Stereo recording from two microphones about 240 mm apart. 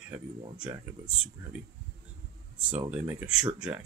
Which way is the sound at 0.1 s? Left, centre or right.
Centre.